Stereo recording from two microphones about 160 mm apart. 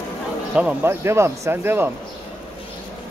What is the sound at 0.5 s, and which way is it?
A man's voice, 10° right (ahead or behind).